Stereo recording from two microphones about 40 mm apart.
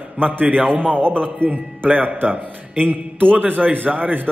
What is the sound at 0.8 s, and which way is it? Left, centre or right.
Speech, left.